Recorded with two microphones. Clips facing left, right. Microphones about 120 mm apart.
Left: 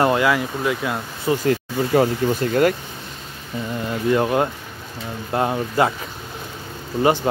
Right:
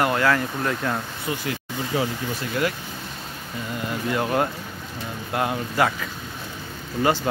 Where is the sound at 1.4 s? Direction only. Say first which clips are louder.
Left 9 dB; 45° left (ahead or behind).